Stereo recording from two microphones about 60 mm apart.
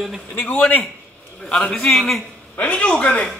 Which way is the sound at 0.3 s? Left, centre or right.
Left.